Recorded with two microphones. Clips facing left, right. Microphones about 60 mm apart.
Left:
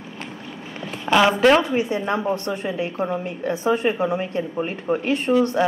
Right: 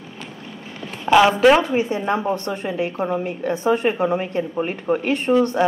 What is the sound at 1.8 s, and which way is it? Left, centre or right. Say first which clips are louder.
Speech: right 1 dB; right.